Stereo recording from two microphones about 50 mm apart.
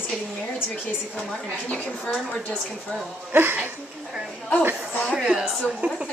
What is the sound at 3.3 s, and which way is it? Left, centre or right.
Speech, right.